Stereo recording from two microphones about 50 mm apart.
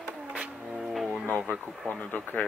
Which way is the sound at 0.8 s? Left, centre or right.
Centre.